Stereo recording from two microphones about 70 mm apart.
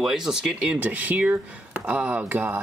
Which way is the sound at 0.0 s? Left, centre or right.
Centre.